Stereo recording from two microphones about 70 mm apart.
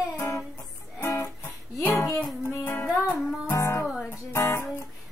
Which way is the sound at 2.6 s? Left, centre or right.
Left.